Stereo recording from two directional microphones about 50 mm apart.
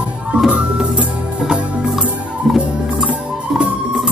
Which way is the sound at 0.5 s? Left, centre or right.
Right.